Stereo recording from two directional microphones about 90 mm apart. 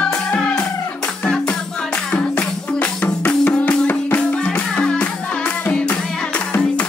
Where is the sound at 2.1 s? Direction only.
15° left (ahead or behind).